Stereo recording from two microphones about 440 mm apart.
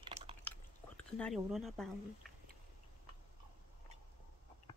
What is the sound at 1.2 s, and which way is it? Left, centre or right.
Speech, centre.